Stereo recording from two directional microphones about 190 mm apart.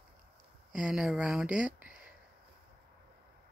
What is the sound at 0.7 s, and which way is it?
Speech, 5° right (ahead or behind).